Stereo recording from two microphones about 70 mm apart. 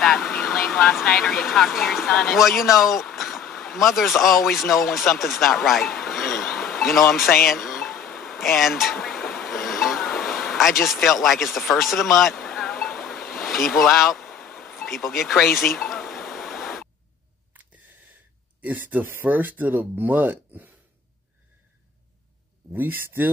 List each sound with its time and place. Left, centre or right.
0.0 s vehicle: centre
1.0 s speech: centre
3.2 s a sound: centre
3.5 s speech: centre
7.4 s a sound: centre
10.1 s vehicle: centre
14.8 s a sound: centre
18.6 s speech: right
22.7 s speech: right